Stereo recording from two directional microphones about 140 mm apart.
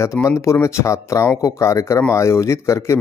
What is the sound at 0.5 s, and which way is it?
Speech, 20° left (ahead or behind).